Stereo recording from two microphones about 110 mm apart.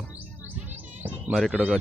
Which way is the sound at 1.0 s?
15° right (ahead or behind).